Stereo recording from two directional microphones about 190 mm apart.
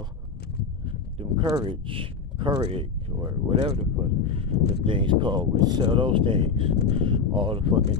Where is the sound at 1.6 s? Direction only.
25° right (ahead or behind).